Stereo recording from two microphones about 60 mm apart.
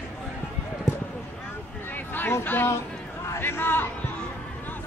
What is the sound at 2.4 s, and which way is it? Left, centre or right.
Speech, left.